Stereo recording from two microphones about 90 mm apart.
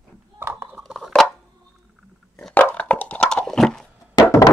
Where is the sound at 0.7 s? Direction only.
Centre (ahead or behind).